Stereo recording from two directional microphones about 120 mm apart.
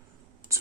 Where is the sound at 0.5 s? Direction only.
25° right (ahead or behind).